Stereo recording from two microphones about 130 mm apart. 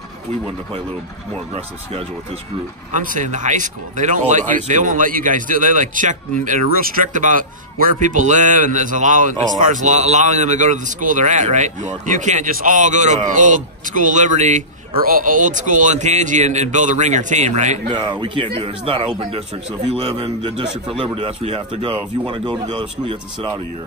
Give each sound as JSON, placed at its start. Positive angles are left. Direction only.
{"t": 2.9, "sound": "speech", "side_deg": -80}
{"t": 15.0, "sound": "speech", "side_deg": -90}
{"t": 17.8, "sound": "speech", "side_deg": -35}